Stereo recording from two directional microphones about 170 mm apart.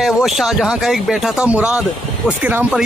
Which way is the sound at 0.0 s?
Centre (ahead or behind).